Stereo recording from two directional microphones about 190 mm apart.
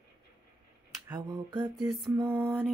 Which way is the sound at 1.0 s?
15° right (ahead or behind).